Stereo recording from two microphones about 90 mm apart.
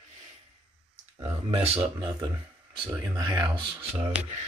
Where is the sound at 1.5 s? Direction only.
90° right.